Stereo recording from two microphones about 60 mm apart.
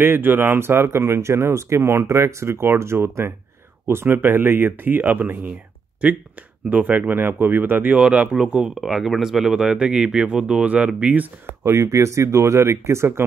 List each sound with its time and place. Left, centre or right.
0.0 s speech: right
6.7 s speech: right
8.0 s speech: centre
8.8 s speech: centre; by 10.9 s right
11.6 s speech: right